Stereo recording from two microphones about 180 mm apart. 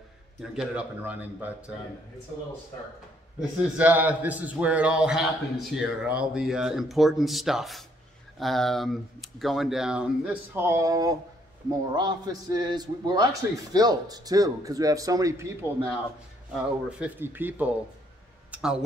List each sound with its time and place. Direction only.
0.4 s speech: 5° right (ahead or behind)
3.3 s a man's voice: 10° right (ahead or behind)
17.0 s speech: 10° right (ahead or behind)